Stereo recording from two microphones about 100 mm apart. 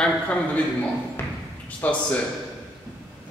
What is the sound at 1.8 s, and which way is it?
Speech, 15° left (ahead or behind).